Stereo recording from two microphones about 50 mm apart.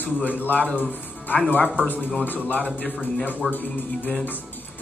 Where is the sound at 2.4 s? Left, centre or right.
Left.